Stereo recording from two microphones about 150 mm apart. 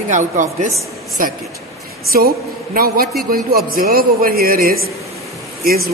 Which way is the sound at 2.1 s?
80° right.